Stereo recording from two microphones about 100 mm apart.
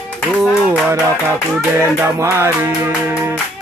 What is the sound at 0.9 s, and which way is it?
Music, 25° right (ahead or behind).